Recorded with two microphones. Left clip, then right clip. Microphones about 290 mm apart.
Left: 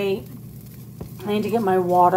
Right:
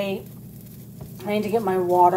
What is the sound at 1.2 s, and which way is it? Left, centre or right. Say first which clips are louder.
Speech: left 1 dB; centre.